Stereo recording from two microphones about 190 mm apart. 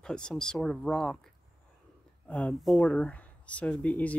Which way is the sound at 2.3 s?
5° left (ahead or behind).